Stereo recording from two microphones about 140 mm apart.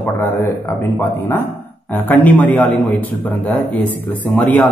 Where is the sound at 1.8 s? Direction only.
10° left (ahead or behind).